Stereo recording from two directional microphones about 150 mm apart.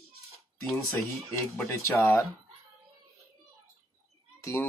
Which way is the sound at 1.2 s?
20° left (ahead or behind).